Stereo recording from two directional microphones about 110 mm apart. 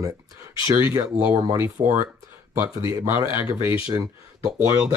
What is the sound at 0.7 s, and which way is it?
Speech, 25° right (ahead or behind).